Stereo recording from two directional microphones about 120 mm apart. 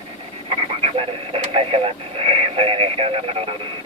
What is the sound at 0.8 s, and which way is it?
Radio, 50° right (ahead or behind).